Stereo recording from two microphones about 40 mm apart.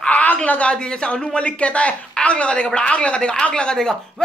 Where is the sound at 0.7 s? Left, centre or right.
Left.